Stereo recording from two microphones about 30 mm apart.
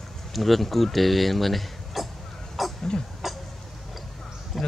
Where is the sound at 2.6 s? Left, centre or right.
Centre.